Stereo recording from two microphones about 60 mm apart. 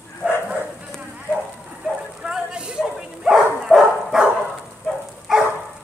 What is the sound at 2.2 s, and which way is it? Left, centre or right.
Bow-wow, centre.